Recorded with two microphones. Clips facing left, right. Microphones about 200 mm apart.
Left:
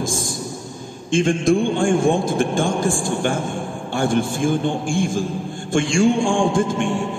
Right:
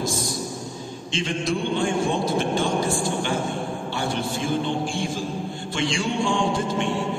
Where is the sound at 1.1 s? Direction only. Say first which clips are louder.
Left 9 dB; 50° left (ahead or behind).